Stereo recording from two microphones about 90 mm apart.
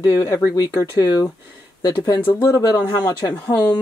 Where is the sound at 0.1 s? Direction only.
30° left (ahead or behind).